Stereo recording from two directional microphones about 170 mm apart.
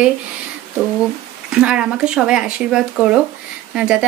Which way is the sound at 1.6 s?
5° right (ahead or behind).